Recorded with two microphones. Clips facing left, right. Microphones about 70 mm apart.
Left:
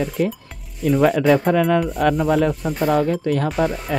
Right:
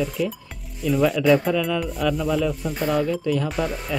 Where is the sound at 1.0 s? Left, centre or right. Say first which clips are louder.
Left 2 dB; left.